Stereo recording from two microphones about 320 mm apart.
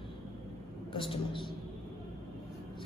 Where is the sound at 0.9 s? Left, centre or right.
Centre.